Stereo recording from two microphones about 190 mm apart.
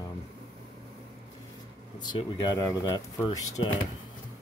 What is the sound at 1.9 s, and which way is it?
Speech, 20° left (ahead or behind).